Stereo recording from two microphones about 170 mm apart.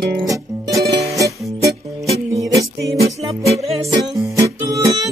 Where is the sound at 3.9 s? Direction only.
20° right (ahead or behind).